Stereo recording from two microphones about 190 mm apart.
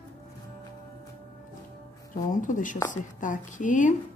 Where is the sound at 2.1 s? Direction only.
40° left (ahead or behind).